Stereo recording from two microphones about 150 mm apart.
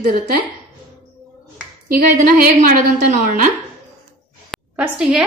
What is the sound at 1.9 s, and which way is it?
A woman's voice, 70° right (ahead or behind).